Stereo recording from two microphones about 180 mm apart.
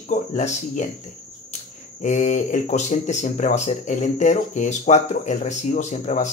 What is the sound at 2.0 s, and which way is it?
Speech, 40° left (ahead or behind).